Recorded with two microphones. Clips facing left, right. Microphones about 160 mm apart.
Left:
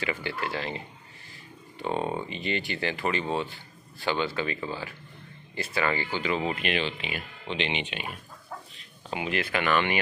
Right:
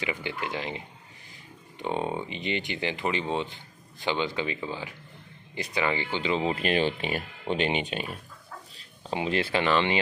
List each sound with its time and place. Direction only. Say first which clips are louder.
0.0 s speech: left 1 dB; 15° right (ahead or behind)
6.5 s speech: right 4 dB; 40° right (ahead or behind)
8.7 s speech: right 4 dB; 30° right (ahead or behind)